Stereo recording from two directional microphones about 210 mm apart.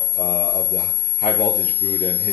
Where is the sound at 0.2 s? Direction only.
40° left (ahead or behind).